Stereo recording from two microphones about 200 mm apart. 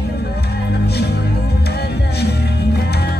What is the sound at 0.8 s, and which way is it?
Music, 55° left (ahead or behind).